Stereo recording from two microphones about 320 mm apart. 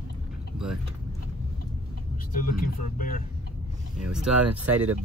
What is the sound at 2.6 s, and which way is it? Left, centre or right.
Speech, left.